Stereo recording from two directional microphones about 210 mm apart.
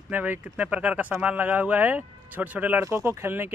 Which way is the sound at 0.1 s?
5° right (ahead or behind).